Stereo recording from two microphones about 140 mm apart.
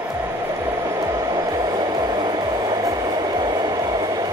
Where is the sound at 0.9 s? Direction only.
25° right (ahead or behind).